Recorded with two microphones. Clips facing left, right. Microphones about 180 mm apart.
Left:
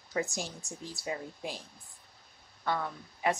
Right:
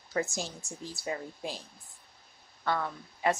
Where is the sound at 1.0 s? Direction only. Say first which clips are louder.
Right 1 dB; 15° left (ahead or behind).